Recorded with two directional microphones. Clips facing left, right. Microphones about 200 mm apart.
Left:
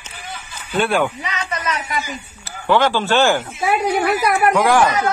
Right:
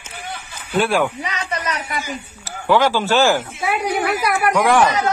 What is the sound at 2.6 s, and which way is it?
Speech, 5° right (ahead or behind).